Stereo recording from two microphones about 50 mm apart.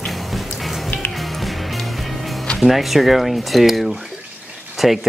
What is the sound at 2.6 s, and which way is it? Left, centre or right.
Speech, centre.